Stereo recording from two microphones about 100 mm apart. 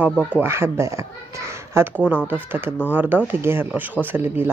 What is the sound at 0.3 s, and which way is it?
Speech, 25° right (ahead or behind).